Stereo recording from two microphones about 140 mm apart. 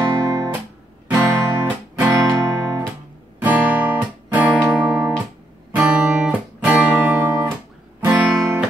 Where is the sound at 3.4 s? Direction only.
10° right (ahead or behind).